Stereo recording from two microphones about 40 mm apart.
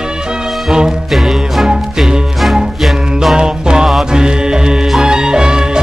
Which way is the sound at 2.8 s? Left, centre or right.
Centre.